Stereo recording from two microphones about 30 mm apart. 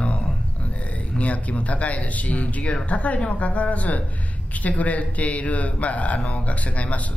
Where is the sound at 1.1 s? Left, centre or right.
Left.